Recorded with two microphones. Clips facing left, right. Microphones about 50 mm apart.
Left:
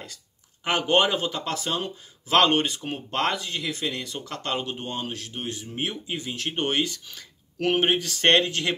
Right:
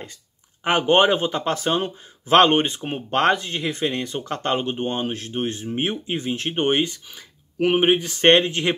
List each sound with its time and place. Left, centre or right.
0.7 s speech: right